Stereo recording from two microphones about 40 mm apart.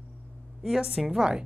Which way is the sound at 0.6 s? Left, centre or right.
Centre.